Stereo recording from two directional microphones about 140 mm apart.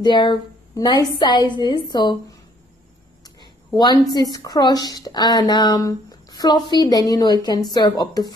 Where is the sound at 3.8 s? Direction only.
30° left (ahead or behind).